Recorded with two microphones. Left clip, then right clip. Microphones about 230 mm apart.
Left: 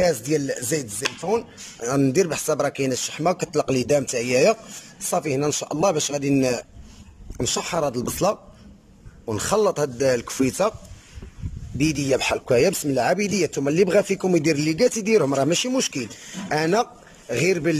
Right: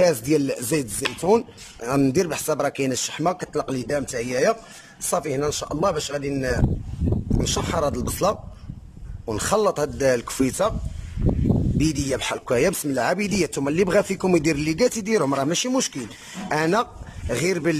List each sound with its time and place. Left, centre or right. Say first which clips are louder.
0.0 s chopping: right 2 dB; centre
0.5 s speech: right 1 dB; centre
1.0 s chopping: right 5 dB; centre
1.8 s speech: left 1 dB; centre
11.8 s speech: left 6 dB; centre